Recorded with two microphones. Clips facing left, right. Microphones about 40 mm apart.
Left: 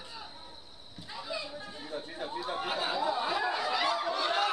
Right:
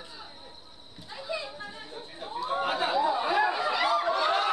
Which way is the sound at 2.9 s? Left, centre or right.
Centre.